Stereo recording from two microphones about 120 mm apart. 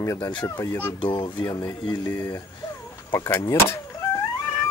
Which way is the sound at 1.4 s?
25° left (ahead or behind).